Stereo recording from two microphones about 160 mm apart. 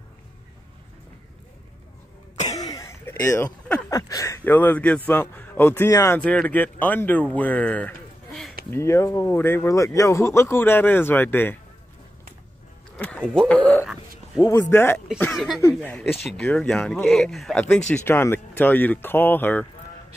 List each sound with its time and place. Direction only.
2.3 s cough: 45° left (ahead or behind)
2.6 s a sound: 20° left (ahead or behind)
3.9 s a man's voice: 20° left (ahead or behind); by 8.5 s centre (ahead or behind)
8.6 s a man's voice: 15° left (ahead or behind)
12.9 s a man's voice: 10° left (ahead or behind)
15.3 s a man's voice: centre (ahead or behind)